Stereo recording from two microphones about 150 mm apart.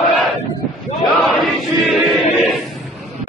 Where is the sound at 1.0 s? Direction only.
Centre (ahead or behind).